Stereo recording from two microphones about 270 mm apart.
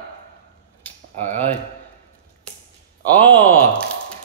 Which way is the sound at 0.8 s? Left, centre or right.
Centre.